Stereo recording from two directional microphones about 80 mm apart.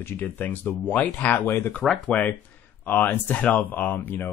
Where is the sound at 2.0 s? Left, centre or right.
Centre.